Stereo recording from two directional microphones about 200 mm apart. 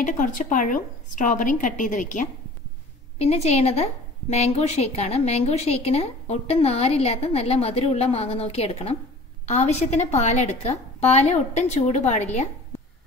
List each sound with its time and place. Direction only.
0.0 s a woman's voice: 40° left (ahead or behind)